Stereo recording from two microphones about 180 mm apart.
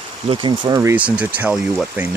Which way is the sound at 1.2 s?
5° right (ahead or behind).